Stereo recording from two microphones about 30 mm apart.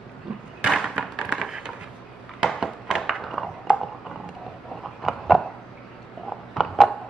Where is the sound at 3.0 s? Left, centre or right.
Centre.